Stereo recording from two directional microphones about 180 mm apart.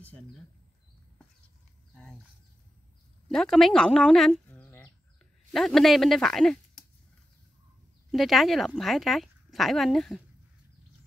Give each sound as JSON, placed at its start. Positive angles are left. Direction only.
{"t": 3.3, "sound": "speech", "side_deg": 0}
{"t": 8.1, "sound": "speech", "side_deg": 0}